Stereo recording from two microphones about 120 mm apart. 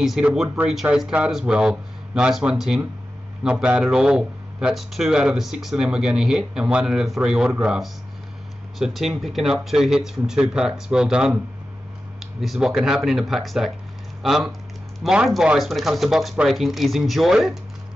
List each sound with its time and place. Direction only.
0.0 s speech: 5° right (ahead or behind)